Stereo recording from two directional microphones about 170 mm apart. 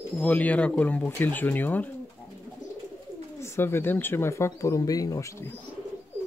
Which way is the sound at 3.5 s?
15° left (ahead or behind).